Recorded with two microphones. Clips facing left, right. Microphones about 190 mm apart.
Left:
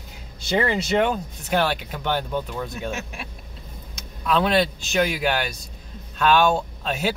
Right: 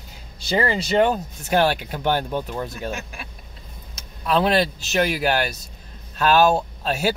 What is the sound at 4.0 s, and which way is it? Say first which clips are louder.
Vehicle: right 1 dB; 40° right (ahead or behind).